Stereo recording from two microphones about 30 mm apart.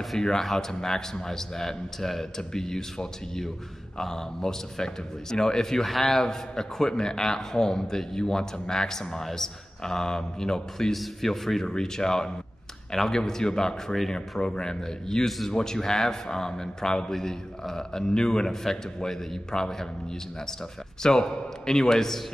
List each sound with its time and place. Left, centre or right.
0.2 s a man's voice: centre
2.3 s a man's voice: centre
10.9 s a man's voice: centre
11.6 s a man's voice: left
15.2 s a man's voice: centre
15.5 s a man's voice: centre
18.5 s a man's voice: centre
21.0 s a man's voice: left